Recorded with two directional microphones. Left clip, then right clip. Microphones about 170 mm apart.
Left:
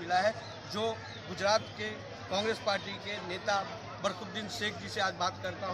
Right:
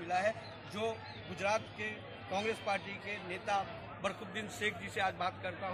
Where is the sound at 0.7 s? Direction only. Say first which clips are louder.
Left 4 dB; 10° left (ahead or behind).